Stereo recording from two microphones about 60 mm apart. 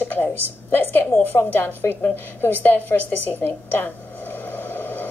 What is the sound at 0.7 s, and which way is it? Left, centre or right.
A woman's voice, left.